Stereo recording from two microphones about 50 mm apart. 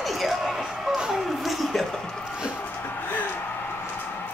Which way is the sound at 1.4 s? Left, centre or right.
Centre.